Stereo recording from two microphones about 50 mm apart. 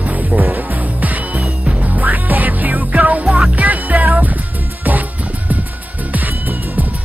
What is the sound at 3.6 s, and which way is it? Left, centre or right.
Music, right.